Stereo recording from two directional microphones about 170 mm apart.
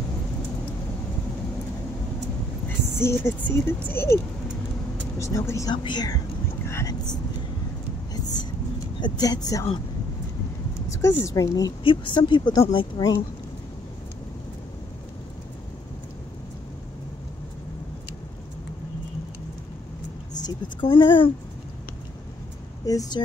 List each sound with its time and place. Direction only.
3.0 s speech: 15° left (ahead or behind)
5.2 s speech: 15° left (ahead or behind)
8.1 s whispering: 25° left (ahead or behind)
9.0 s a woman's voice: 25° left (ahead or behind)
10.9 s a sound: 15° left (ahead or behind)
11.2 s a woman's voice: 20° left (ahead or behind)
20.4 s a woman's voice: 25° left (ahead or behind)
22.8 s a woman's voice: 20° left (ahead or behind)